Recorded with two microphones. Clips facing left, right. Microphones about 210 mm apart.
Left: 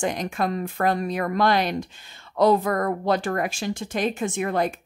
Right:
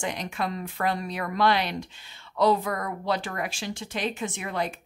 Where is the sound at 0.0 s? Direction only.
45° left (ahead or behind).